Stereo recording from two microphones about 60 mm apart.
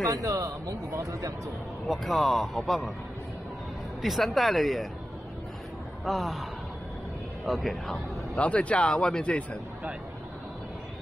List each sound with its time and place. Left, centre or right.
0.1 s a man's voice: right
1.9 s speech: centre
4.0 s speech: centre
6.0 s speech: centre
7.4 s speech: centre
8.4 s speech: left